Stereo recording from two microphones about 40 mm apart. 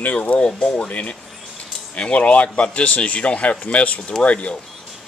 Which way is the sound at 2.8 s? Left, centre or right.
Left.